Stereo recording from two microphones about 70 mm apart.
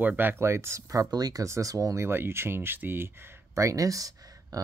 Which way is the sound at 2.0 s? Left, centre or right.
Right.